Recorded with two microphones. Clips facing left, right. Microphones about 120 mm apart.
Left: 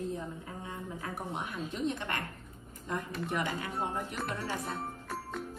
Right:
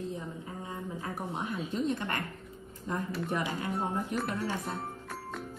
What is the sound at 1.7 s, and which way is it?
Speech, 40° right (ahead or behind).